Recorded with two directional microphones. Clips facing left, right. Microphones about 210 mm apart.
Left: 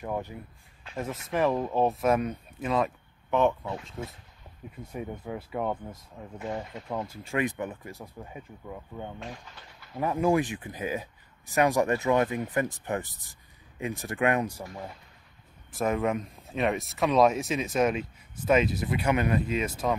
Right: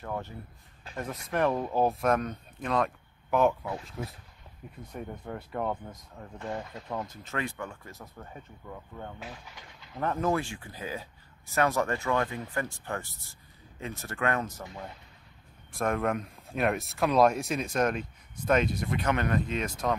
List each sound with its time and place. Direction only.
0.0 s speech: 15° left (ahead or behind)
0.9 s speech: 5° left (ahead or behind)
15.7 s speech: 5° left (ahead or behind)